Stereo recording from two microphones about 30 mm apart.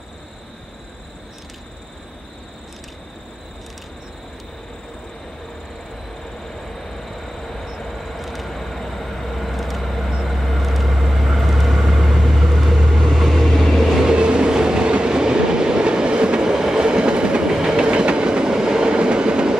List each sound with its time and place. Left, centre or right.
6.5 s train: centre
8.1 s vehicle: centre
14.0 s train: right
16.4 s train: right
17.5 s train: centre
17.7 s train: right